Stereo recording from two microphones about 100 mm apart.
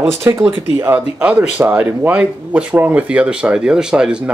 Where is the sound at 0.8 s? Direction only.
15° right (ahead or behind).